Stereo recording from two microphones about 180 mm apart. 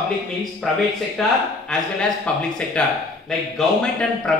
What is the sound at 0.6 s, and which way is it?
Speech, 5° left (ahead or behind).